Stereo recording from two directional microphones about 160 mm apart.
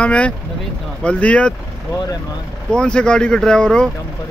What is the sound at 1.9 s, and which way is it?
Speech, 25° left (ahead or behind).